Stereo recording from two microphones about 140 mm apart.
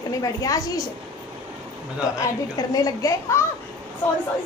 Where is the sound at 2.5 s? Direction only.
25° left (ahead or behind).